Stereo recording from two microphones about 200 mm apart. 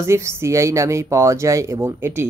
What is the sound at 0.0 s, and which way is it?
Speech, 15° right (ahead or behind).